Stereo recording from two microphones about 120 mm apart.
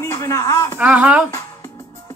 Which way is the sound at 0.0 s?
25° left (ahead or behind).